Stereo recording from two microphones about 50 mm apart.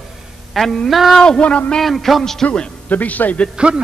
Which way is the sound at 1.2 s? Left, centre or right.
Centre.